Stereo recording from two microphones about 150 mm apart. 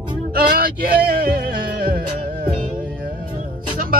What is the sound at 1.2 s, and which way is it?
Music, 75° right (ahead or behind).